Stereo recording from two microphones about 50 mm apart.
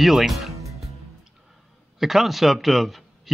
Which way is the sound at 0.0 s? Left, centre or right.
Centre.